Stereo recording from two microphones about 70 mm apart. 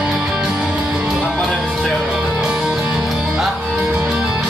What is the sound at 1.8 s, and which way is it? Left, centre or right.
Music, centre.